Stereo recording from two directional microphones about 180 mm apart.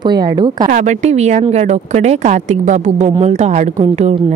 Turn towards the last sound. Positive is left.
turn(degrees=-40)  # may be behind; listen again after turning